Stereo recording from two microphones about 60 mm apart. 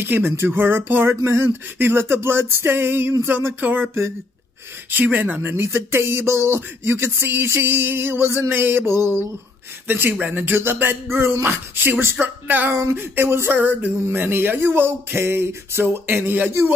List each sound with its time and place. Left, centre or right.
0.0 s speech: right
4.9 s speech: right
5.4 s speech: right
13.6 s speech: right